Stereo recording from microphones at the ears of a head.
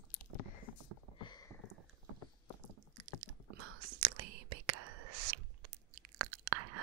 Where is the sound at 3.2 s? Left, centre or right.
Right.